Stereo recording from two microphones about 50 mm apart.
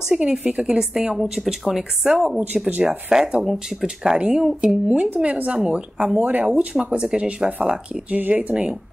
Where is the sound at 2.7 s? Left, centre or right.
Right.